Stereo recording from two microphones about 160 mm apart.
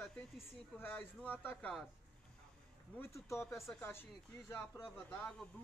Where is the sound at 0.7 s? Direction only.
15° left (ahead or behind).